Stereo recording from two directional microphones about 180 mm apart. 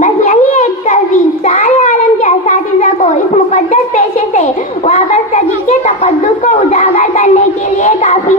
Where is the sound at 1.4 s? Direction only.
35° left (ahead or behind).